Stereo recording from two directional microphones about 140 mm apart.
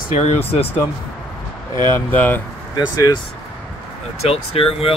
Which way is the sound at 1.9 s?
15° left (ahead or behind).